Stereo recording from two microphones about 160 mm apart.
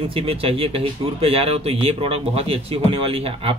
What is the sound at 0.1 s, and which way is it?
Speech, 35° right (ahead or behind).